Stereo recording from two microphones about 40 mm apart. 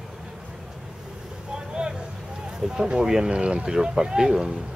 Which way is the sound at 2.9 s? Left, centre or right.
Centre.